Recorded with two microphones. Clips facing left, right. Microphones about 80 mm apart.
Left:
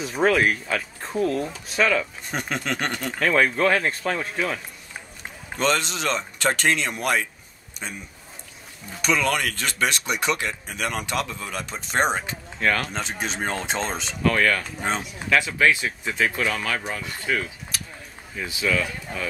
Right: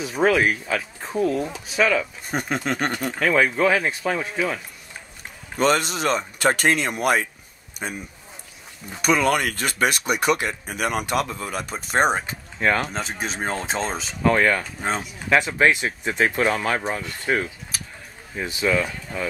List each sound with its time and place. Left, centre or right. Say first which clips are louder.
0.0 s speech: right 1 dB; centre
5.6 s speech: right 3 dB; centre
7.8 s speech: right 4 dB; right
9.0 s speech: right 3 dB; centre
12.5 s speech: right 2 dB; centre
12.8 s speech: right 1 dB; centre
14.2 s speech: right 2 dB; right
14.6 s speech: right 1 dB; centre
15.2 s speech: right 2 dB; right